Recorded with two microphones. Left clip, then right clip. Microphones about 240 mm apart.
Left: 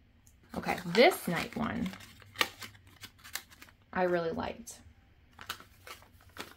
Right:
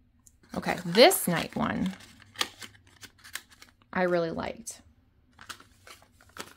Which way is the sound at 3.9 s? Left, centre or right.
Right.